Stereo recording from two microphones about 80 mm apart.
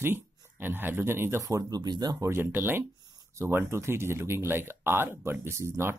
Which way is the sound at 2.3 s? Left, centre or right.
Right.